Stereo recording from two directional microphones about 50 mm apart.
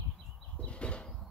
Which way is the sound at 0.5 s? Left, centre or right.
Left.